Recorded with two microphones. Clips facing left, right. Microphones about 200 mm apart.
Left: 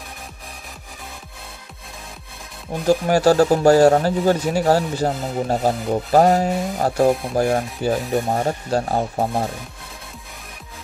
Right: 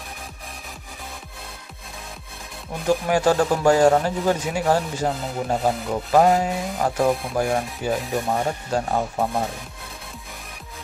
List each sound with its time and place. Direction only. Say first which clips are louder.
2.9 s speech: left 4 dB; 35° left (ahead or behind)